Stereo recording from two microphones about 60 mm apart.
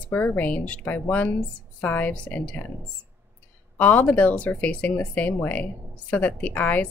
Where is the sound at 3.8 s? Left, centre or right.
Left.